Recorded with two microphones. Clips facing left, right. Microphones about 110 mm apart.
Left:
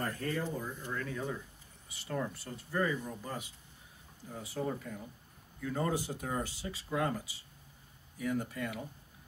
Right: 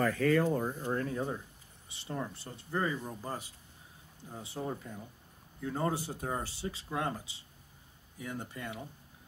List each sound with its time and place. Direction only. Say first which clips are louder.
0.2 s speech: right 8 dB; 90° right
0.7 s speech: right 5 dB; 45° right (ahead or behind); by 8.8 s 25° right (ahead or behind)